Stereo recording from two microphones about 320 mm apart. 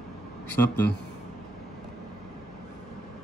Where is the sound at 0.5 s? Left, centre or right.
Centre.